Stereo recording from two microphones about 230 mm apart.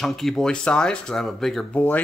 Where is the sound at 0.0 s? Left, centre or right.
Centre.